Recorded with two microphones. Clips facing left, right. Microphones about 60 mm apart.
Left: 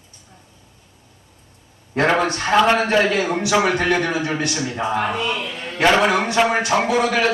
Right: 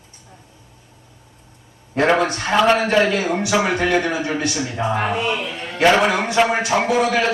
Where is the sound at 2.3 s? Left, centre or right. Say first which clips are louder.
Left 2 dB; centre.